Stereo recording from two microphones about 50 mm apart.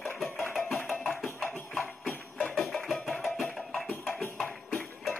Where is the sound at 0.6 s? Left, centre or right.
Centre.